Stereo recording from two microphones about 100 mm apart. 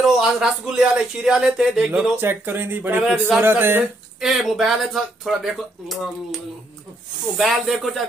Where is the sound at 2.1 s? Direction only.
20° right (ahead or behind).